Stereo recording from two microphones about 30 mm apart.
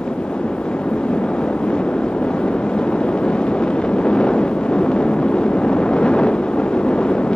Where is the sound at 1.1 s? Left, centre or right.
Left.